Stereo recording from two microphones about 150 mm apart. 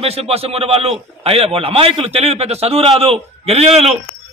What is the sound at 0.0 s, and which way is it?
A man's voice, 40° right (ahead or behind).